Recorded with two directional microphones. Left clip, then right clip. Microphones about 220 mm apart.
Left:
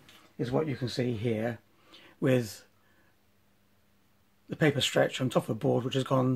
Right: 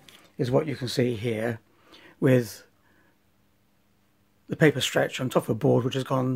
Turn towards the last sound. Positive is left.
turn(degrees=-35)  # may be behind; listen again after turning